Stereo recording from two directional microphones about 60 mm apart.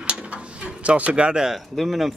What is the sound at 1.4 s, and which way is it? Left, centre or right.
Speech, centre.